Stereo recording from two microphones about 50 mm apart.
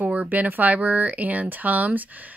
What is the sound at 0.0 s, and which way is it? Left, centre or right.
Speech, right.